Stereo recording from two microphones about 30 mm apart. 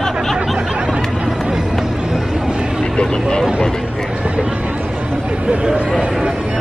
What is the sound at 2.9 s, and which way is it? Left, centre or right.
Speech, left.